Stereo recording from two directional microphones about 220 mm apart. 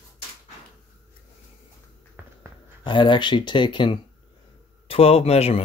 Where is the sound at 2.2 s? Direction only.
10° right (ahead or behind).